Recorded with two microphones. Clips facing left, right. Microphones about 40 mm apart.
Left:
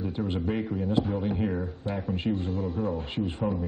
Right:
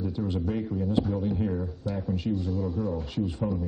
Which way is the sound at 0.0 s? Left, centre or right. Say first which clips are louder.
Even; left.